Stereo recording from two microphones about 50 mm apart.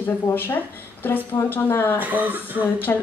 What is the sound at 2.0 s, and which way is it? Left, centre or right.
Speech, right.